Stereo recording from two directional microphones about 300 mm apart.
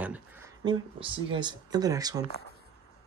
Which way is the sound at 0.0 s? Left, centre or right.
Centre.